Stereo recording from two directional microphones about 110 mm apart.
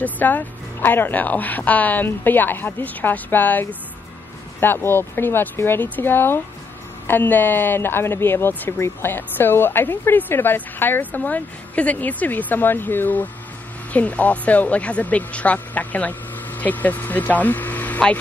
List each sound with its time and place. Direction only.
0.0 s speech: 15° left (ahead or behind)